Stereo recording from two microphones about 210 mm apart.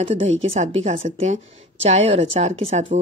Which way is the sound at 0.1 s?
30° right (ahead or behind).